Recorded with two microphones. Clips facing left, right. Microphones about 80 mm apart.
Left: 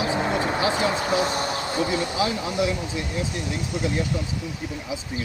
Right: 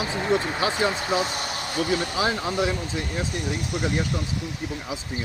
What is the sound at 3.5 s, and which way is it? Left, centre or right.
Speech, right.